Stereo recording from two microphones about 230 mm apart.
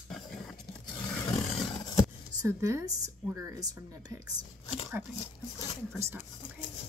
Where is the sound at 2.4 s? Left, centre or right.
Centre.